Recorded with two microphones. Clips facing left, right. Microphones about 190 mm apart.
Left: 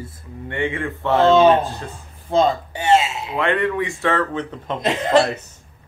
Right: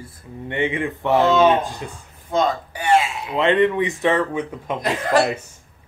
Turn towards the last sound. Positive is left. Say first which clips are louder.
# left 3 dB
turn(degrees=25)  # may be behind; listen again after turning